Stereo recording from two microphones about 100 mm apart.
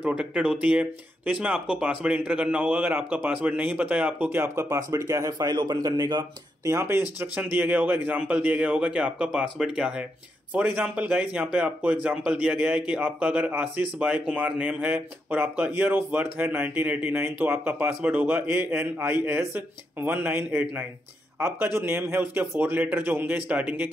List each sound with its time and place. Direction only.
0.0 s speech: 10° right (ahead or behind)
4.3 s speech: 25° right (ahead or behind); by 6.7 s 40° right (ahead or behind)
6.7 s speech: 25° right (ahead or behind)